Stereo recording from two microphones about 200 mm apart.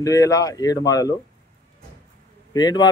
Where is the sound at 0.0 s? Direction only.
15° left (ahead or behind).